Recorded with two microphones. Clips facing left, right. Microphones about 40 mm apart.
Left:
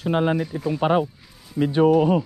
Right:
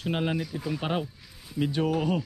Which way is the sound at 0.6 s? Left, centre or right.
Centre.